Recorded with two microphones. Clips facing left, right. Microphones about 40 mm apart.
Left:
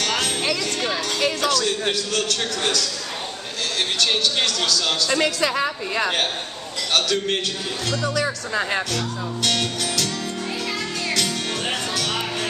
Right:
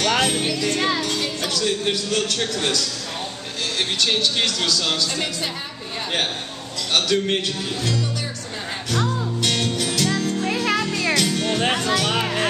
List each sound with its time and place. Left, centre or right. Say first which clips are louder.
0.0 s music: right 4 dB; centre
0.4 s music: even; left
1.6 s a man's voice: right 1 dB; centre
4.0 s a man's voice: even; centre
5.1 s a woman's voice: left 6 dB; left
6.9 s music: right 1 dB; centre
8.9 s music: right 3 dB; centre
10.4 s music: right 5 dB; right
11.1 s music: right 3 dB; centre